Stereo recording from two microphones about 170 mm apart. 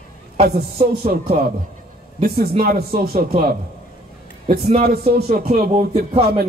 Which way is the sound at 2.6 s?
65° right (ahead or behind).